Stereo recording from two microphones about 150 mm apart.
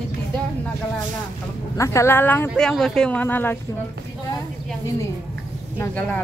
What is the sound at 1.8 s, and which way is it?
A woman's voice, 20° left (ahead or behind).